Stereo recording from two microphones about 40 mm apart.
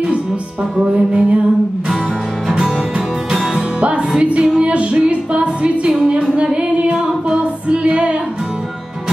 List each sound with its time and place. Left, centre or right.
0.7 s music: right
2.4 s music: right